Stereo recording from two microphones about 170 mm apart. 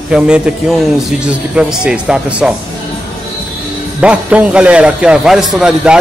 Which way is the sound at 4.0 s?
5° right (ahead or behind).